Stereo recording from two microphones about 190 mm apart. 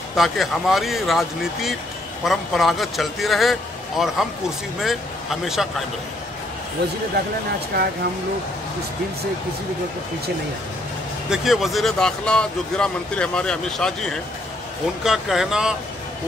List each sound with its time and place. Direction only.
0.1 s speech: centre (ahead or behind)
7.7 s speech: 55° right (ahead or behind)
11.2 s speech: centre (ahead or behind)